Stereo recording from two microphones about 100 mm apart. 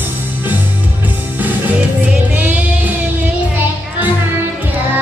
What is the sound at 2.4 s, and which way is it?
Music, 15° right (ahead or behind).